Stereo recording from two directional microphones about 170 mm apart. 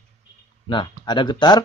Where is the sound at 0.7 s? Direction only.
25° left (ahead or behind).